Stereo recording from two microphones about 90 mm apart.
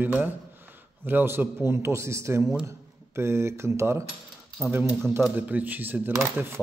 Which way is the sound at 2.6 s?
30° right (ahead or behind).